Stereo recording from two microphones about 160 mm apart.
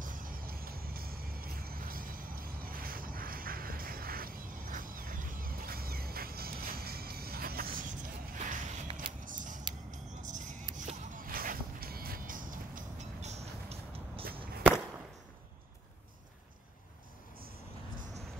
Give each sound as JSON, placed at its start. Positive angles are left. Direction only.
{"t": 0.0, "sound": "music", "side_deg": -60}
{"t": 8.9, "sound": "music", "side_deg": -35}
{"t": 9.2, "sound": "creak", "side_deg": -55}
{"t": 9.8, "sound": "scissors", "side_deg": -50}
{"t": 10.8, "sound": "a sound", "side_deg": -55}